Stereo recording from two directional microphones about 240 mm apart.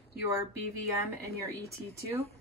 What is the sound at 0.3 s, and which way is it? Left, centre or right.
A woman's voice, centre.